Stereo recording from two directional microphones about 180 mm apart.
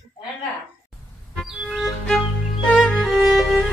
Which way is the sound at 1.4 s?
5° right (ahead or behind).